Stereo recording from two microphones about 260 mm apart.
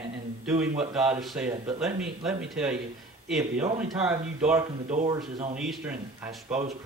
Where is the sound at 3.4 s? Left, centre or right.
Right.